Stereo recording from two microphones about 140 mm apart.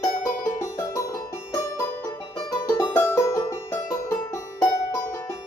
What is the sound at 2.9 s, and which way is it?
Music, 15° left (ahead or behind).